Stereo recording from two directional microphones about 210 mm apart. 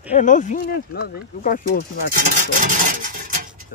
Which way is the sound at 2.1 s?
40° right (ahead or behind).